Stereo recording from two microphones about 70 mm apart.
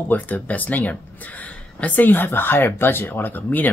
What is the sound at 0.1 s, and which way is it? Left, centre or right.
Speech, left.